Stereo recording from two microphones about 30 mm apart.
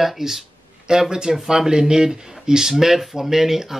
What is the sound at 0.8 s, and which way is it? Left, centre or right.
Speech, right.